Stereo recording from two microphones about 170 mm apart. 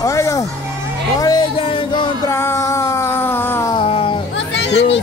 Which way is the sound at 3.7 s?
30° left (ahead or behind).